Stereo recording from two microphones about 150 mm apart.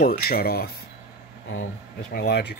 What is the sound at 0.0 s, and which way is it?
Cutlery, 85° left.